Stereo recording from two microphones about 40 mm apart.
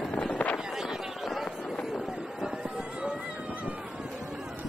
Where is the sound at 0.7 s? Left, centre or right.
Centre.